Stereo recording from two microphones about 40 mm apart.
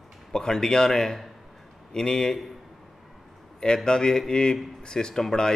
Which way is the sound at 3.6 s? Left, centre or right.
Centre.